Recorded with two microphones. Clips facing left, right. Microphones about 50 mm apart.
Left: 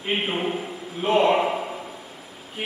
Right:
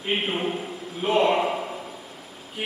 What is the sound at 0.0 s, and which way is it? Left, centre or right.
A man's voice, centre.